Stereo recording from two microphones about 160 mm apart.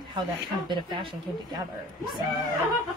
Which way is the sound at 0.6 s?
30° right (ahead or behind).